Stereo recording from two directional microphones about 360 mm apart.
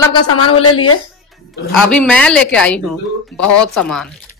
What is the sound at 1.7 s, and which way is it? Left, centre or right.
Speech, centre.